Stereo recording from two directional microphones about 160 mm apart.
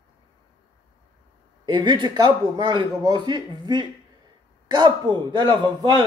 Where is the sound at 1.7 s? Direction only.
30° right (ahead or behind).